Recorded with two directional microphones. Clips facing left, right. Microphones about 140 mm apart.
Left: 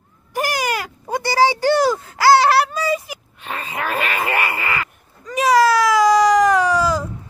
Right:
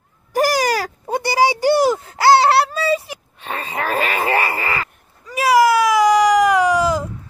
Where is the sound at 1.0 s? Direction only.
20° right (ahead or behind); by 4.8 s 35° right (ahead or behind).